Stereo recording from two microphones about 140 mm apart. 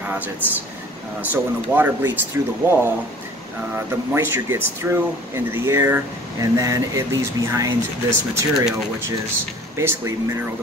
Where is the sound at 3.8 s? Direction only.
15° right (ahead or behind).